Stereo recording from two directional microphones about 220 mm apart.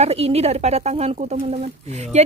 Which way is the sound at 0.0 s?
30° right (ahead or behind).